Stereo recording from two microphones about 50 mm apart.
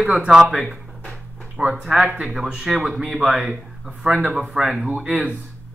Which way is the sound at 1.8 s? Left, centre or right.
Centre.